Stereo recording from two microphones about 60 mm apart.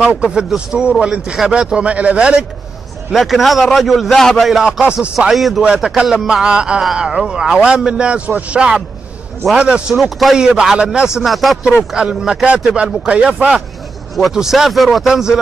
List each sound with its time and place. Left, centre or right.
0.0 s speech: right
0.5 s a man's voice: centre
3.1 s a man's voice: centre
5.6 s a man's voice: centre
6.8 s a man's voice: centre
9.9 s a man's voice: centre
10.3 s a man's voice: centre
11.2 s a man's voice: centre
11.9 s a man's voice: centre
14.3 s a man's voice: centre